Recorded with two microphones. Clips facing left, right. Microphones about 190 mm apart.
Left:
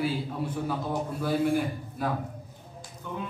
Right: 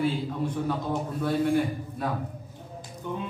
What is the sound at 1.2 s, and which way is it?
Speech, 5° left (ahead or behind).